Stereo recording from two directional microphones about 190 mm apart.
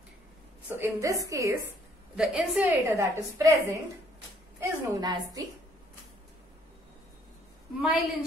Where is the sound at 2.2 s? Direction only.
5° right (ahead or behind).